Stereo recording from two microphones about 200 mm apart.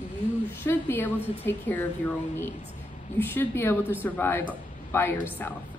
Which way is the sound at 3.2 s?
10° left (ahead or behind).